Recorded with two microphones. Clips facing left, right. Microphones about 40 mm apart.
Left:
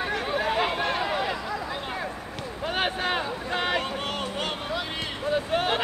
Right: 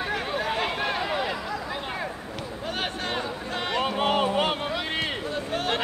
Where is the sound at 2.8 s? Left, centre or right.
Centre.